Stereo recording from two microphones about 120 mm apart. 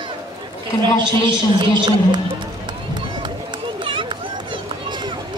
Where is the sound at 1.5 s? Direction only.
40° right (ahead or behind).